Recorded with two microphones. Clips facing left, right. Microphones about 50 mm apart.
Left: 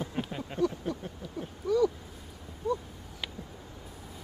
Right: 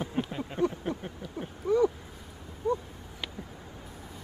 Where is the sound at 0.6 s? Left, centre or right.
Right.